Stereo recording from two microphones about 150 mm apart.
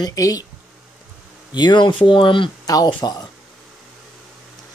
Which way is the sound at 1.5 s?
30° left (ahead or behind).